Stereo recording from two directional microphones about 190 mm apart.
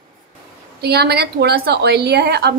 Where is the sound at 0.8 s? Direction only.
60° right (ahead or behind).